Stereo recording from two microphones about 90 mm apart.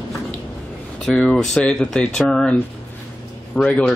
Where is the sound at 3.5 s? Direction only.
15° left (ahead or behind).